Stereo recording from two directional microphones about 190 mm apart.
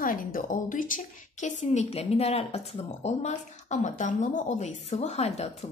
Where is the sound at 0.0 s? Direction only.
45° left (ahead or behind).